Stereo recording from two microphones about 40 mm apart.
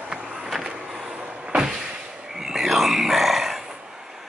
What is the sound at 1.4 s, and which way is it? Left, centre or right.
Vehicle, centre.